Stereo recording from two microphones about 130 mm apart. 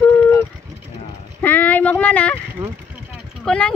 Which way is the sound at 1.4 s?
15° left (ahead or behind).